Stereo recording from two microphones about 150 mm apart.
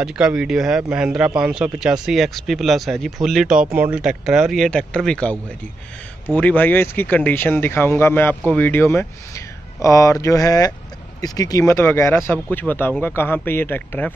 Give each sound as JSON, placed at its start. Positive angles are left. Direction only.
{"t": 0.0, "sound": "speech", "side_deg": -5}